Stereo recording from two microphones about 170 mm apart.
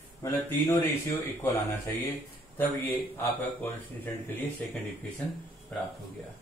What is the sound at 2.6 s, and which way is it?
Speech, 10° left (ahead or behind).